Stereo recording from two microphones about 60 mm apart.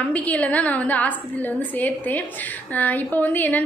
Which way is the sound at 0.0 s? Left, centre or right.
Left.